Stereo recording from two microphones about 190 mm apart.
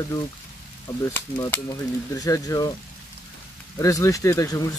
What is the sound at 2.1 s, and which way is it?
Speech, 15° left (ahead or behind).